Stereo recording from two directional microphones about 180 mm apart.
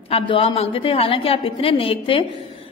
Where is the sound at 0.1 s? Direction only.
30° left (ahead or behind).